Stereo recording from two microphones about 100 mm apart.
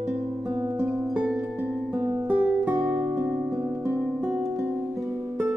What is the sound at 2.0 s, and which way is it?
Music, 15° right (ahead or behind).